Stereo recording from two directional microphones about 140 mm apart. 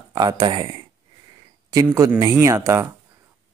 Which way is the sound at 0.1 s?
30° right (ahead or behind).